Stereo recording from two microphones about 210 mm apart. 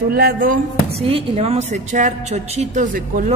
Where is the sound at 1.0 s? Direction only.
30° right (ahead or behind).